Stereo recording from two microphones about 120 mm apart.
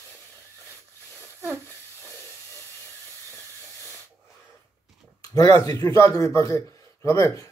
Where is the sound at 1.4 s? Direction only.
20° right (ahead or behind).